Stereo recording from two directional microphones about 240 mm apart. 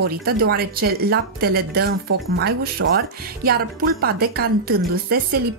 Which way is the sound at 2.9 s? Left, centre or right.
Right.